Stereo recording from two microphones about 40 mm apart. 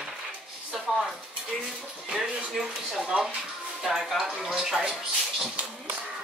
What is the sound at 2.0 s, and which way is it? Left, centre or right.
Speech, centre.